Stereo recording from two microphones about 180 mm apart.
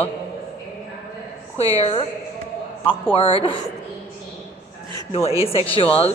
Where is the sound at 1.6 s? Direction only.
35° left (ahead or behind).